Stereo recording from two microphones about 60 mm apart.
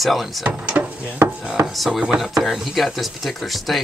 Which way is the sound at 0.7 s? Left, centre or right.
Right.